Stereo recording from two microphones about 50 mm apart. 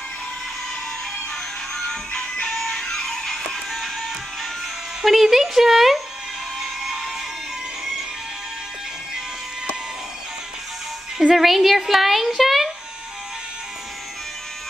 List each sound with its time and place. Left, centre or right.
2.4 s music: centre
5.0 s speech: centre
11.1 s a sound: centre